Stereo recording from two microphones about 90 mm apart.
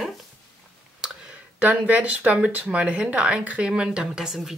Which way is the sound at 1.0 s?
5° right (ahead or behind).